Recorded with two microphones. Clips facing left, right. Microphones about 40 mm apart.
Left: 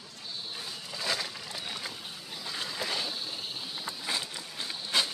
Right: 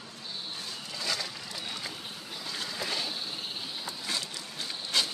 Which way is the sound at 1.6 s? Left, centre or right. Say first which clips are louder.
Right 1 dB; centre.